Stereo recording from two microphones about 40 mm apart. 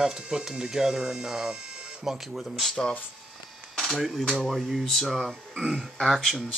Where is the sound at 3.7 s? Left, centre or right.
Centre.